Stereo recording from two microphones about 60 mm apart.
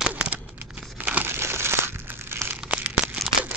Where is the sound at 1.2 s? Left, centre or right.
Right.